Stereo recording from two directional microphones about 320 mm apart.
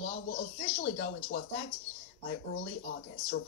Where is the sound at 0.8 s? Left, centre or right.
Left.